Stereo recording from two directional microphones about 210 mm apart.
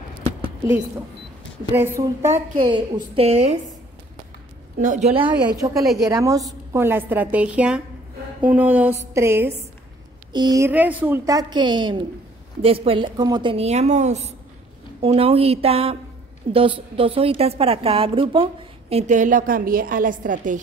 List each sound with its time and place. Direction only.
1.7 s a woman's voice: 10° right (ahead or behind)
2.5 s a woman's voice: 25° right (ahead or behind)
4.7 s a woman's voice: 35° right (ahead or behind)
5.4 s a woman's voice: 15° right (ahead or behind); by 20.6 s 40° right (ahead or behind)